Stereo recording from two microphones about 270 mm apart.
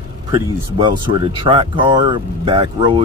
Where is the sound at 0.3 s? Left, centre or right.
Centre.